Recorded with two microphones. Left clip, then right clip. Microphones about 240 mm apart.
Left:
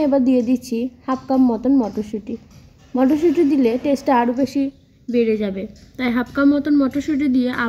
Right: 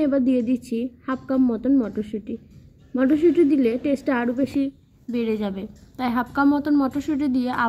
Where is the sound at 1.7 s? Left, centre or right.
Left.